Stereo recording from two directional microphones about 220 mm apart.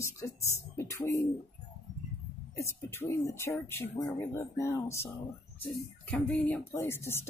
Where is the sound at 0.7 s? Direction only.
15° left (ahead or behind).